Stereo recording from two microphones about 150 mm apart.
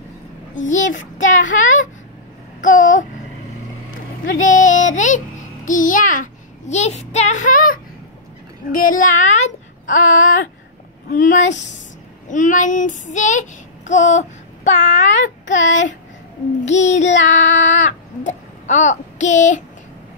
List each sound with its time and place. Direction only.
0.6 s a child's voice: 55° left (ahead or behind)
2.6 s a sound: 60° left (ahead or behind)
4.5 s a child's voice: 55° left (ahead or behind)
6.7 s a child's voice: 50° left (ahead or behind)
12.3 s child singing: 55° left (ahead or behind)